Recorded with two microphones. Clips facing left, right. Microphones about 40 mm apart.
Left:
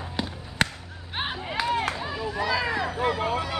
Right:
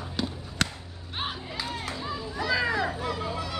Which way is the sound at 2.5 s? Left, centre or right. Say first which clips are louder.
Right 2 dB; centre.